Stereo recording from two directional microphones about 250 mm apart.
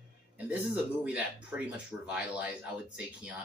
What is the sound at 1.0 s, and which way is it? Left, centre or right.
Speech, centre.